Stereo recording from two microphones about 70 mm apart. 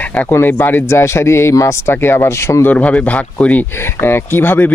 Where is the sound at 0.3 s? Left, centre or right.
Left.